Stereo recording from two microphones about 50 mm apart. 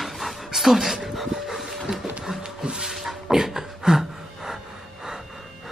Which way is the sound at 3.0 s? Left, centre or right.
Centre.